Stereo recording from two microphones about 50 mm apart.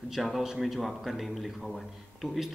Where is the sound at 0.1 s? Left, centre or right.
Centre.